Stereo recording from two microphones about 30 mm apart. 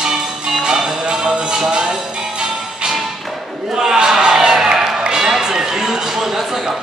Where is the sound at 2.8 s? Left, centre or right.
Right.